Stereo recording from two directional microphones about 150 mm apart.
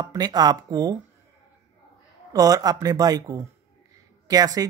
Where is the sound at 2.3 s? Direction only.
25° right (ahead or behind).